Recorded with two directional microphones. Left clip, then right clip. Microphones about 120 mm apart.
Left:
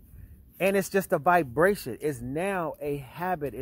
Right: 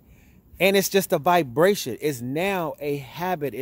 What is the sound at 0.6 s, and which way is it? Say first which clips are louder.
Speech: right 5 dB; 25° right (ahead or behind).